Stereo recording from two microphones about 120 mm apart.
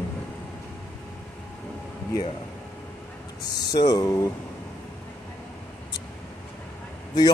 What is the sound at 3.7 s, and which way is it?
Speech, 30° left (ahead or behind).